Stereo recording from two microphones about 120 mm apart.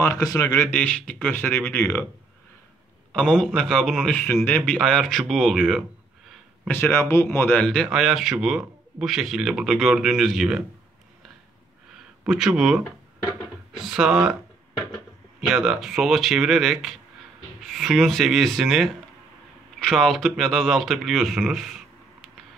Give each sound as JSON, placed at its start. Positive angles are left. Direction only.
{"t": 0.0, "sound": "a man's voice", "side_deg": 30}
{"t": 0.7, "sound": "speech", "side_deg": 10}
{"t": 3.1, "sound": "a man's voice", "side_deg": 5}
{"t": 4.1, "sound": "speech", "side_deg": 15}
{"t": 4.8, "sound": "a man's voice", "side_deg": 5}
{"t": 6.7, "sound": "speech", "side_deg": 20}
{"t": 7.6, "sound": "a man's voice", "side_deg": 5}
{"t": 12.3, "sound": "a man's voice", "side_deg": -5}
{"t": 15.4, "sound": "a man's voice", "side_deg": -5}